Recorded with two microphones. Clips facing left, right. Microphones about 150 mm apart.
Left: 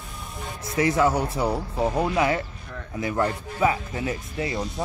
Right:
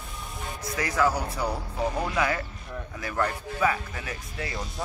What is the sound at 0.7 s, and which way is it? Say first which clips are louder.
Speech: left 5 dB; 25° left (ahead or behind).